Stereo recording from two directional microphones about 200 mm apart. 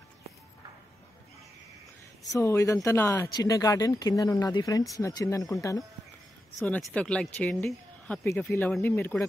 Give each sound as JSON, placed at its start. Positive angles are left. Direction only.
{"t": 2.3, "sound": "speech", "side_deg": 15}